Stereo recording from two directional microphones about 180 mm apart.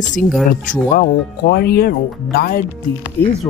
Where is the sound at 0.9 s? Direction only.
60° left (ahead or behind).